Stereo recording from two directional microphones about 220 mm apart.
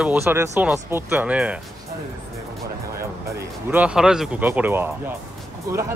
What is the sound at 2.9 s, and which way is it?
Speech, 10° right (ahead or behind).